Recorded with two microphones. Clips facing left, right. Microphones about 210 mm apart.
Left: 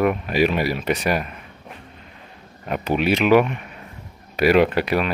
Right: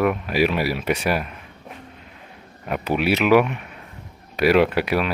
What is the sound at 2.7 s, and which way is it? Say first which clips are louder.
Speech: left 1 dB; 5° right (ahead or behind).